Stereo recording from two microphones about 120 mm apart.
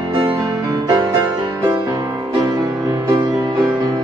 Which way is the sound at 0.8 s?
35° right (ahead or behind).